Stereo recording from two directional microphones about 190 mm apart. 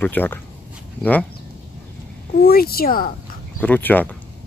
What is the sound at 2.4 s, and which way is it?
Speech, 55° left (ahead or behind).